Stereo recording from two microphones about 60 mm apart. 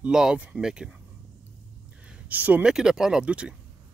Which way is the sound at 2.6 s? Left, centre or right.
Centre.